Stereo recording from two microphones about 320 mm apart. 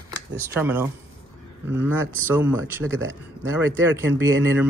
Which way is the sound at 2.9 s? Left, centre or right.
Right.